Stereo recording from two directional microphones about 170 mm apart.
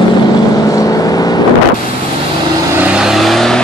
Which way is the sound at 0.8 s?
20° left (ahead or behind).